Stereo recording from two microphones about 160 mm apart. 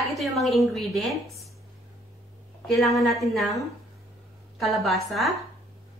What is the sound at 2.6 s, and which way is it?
Speech, centre (ahead or behind).